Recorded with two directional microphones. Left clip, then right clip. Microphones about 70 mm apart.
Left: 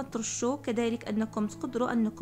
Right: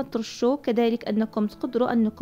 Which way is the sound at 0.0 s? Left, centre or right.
Right.